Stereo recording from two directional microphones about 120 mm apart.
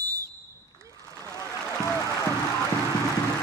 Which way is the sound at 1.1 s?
25° left (ahead or behind).